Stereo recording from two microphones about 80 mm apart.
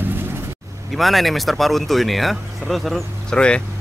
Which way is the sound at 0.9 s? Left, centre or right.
Centre.